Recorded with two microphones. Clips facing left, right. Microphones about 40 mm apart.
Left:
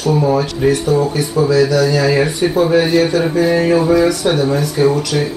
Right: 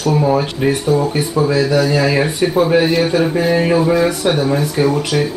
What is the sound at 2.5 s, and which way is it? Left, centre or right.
Speech, centre.